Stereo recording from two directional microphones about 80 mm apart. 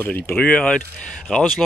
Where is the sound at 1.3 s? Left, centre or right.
Centre.